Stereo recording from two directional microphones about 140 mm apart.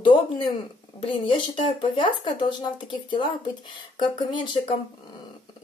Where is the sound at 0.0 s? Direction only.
40° left (ahead or behind).